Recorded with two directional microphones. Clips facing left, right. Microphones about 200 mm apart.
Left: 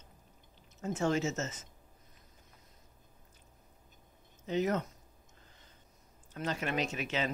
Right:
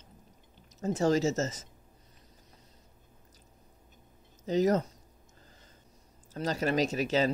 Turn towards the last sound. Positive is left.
turn(degrees=-40)  # may be behind; listen again after turning